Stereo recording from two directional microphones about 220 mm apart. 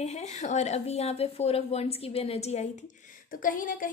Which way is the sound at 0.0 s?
30° left (ahead or behind).